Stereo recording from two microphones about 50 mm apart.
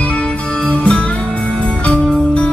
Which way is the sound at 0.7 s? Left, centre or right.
Left.